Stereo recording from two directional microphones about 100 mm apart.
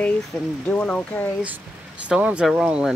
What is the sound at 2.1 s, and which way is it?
Speech, 10° right (ahead or behind).